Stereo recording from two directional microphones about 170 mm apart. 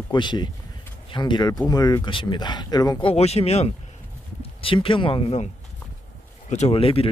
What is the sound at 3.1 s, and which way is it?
Speech, 40° left (ahead or behind).